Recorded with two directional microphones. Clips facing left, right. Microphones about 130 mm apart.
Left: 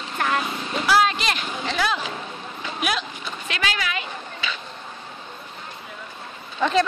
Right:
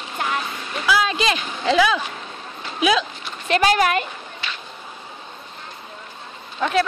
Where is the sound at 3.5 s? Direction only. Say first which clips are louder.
Right 11 dB; 45° right (ahead or behind).